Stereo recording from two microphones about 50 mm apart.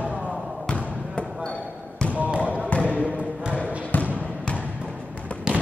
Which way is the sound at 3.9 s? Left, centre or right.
Left.